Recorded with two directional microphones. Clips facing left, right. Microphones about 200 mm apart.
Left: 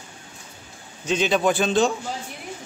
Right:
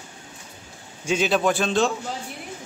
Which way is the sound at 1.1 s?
5° right (ahead or behind).